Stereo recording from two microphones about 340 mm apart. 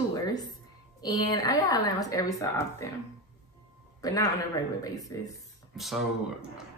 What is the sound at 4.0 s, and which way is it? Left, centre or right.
A woman's voice, centre.